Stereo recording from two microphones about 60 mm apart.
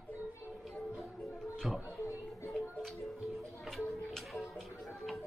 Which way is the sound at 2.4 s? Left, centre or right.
Centre.